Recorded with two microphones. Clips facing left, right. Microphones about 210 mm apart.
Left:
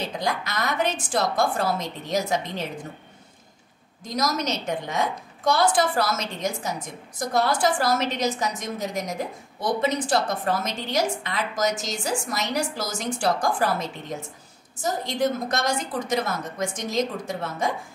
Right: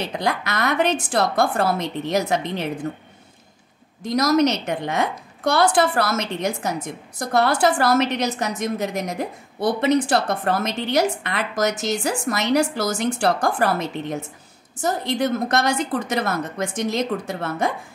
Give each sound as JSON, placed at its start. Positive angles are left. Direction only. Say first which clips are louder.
{"t": 0.2, "sound": "a woman's voice", "louder": "right 5 dB", "side_deg": -65}
{"t": 4.0, "sound": "a woman's voice", "louder": "right 9 dB", "side_deg": -65}